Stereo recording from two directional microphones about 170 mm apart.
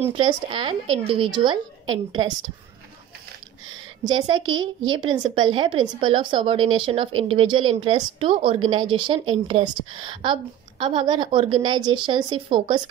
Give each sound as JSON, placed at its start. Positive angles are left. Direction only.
{"t": 0.1, "sound": "a woman's voice", "side_deg": -30}
{"t": 4.0, "sound": "a woman's voice", "side_deg": -25}